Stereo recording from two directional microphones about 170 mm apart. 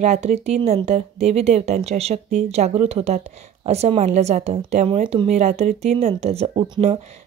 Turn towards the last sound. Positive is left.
turn(degrees=-35)  # may be behind; listen again after turning